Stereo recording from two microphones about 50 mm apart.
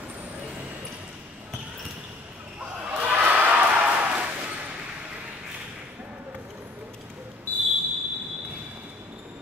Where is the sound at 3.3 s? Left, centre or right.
Right.